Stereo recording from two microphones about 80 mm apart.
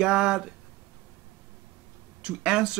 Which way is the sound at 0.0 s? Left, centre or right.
Centre.